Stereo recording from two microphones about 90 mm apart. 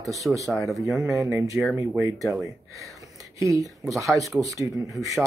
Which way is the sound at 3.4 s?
40° right (ahead or behind).